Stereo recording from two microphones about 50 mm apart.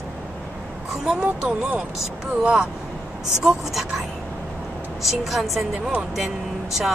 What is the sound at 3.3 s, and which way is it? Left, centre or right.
Speech, centre.